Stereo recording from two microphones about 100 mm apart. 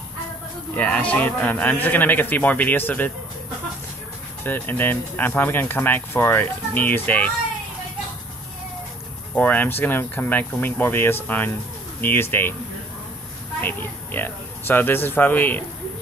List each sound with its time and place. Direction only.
0.7 s a man's voice: 15° left (ahead or behind)
4.4 s speech: 20° left (ahead or behind)
9.3 s speech: 15° left (ahead or behind)
13.6 s a woman's voice: 20° left (ahead or behind)